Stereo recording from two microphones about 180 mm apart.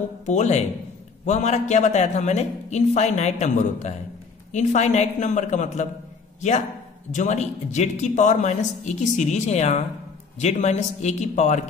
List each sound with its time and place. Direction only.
0.2 s speech: 40° left (ahead or behind)
7.1 s speech: 45° left (ahead or behind)